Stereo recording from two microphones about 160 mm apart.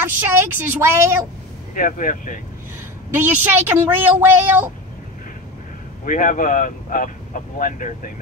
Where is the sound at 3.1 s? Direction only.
15° right (ahead or behind).